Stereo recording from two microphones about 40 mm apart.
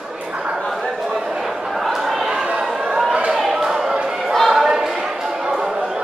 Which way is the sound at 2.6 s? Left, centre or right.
Centre.